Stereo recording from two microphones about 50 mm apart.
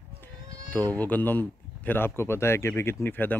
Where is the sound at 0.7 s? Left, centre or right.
Left.